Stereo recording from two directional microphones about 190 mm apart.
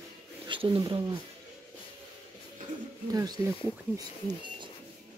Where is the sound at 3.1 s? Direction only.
20° right (ahead or behind).